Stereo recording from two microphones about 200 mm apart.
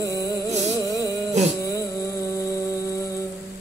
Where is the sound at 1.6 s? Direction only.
15° left (ahead or behind).